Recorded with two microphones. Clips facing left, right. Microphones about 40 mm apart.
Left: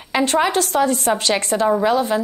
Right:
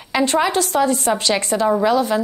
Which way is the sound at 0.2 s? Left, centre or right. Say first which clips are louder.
Even; left.